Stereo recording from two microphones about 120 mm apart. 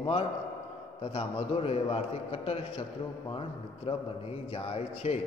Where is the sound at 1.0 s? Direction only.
60° left (ahead or behind).